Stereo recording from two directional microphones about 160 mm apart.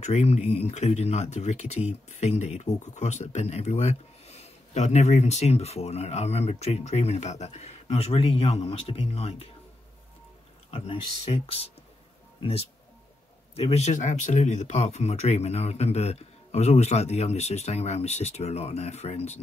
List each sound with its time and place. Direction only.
0.0 s speech: 45° left (ahead or behind)
10.7 s speech: 35° left (ahead or behind)